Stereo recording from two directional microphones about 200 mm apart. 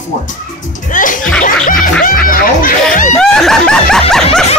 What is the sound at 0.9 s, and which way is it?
Music, 40° left (ahead or behind).